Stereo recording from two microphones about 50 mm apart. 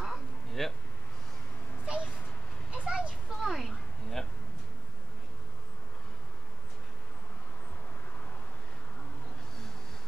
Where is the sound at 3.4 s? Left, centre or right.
Centre.